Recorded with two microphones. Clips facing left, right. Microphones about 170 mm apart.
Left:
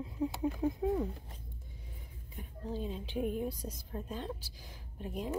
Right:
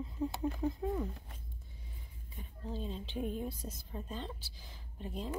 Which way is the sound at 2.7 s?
10° left (ahead or behind).